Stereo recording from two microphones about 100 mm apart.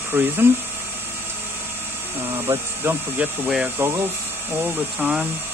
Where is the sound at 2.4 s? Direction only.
20° right (ahead or behind).